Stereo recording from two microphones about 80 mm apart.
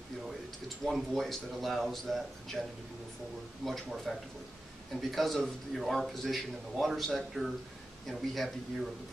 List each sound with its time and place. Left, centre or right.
0.8 s a man's voice: centre
3.6 s a man's voice: centre